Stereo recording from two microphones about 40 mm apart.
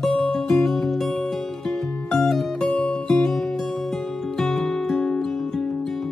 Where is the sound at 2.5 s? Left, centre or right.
Centre.